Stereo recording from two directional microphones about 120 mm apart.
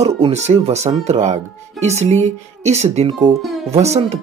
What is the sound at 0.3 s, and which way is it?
Speech, 65° right (ahead or behind).